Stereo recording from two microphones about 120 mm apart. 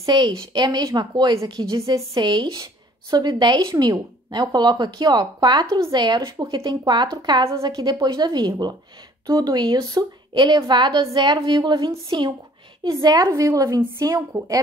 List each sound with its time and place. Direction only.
0.0 s a woman's voice: 40° right (ahead or behind)
12.8 s a woman's voice: 30° right (ahead or behind)